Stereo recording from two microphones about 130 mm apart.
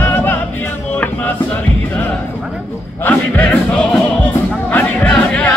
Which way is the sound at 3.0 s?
15° left (ahead or behind).